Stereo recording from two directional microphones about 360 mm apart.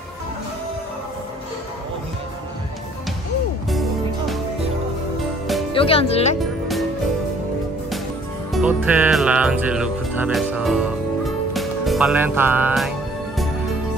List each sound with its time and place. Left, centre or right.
5.7 s speech: centre
8.5 s speech: centre